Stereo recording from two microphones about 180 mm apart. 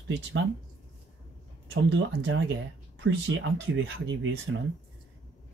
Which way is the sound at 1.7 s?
90° right.